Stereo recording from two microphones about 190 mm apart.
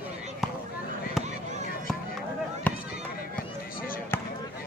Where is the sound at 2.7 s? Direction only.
10° left (ahead or behind).